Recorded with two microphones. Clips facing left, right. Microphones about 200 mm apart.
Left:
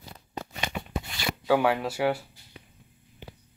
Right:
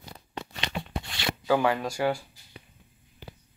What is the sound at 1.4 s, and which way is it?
Speech, 5° left (ahead or behind).